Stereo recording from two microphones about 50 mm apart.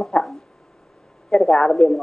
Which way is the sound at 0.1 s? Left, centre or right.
Centre.